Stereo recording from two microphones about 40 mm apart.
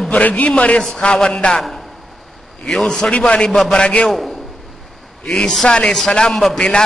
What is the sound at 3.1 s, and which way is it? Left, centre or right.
Speech, left.